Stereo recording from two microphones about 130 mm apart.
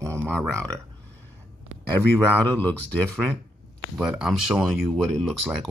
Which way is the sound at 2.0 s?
15° left (ahead or behind).